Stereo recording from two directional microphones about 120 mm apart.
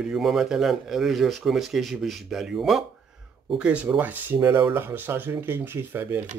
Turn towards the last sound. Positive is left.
turn(degrees=-15)  # may be behind; listen again after turning